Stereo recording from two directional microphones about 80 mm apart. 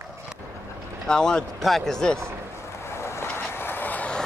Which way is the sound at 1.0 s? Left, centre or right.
Centre.